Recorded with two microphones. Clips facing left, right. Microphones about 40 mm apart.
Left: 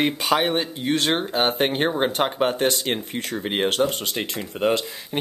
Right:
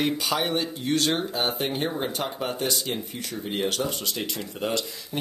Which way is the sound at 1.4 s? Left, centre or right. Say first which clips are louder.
Left 6 dB; left.